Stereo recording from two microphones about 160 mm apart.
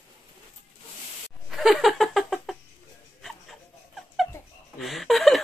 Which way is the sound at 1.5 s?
Centre (ahead or behind).